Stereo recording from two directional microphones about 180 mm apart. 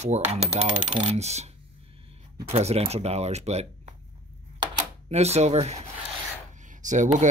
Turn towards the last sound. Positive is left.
turn(degrees=-45)  # may be behind; listen again after turning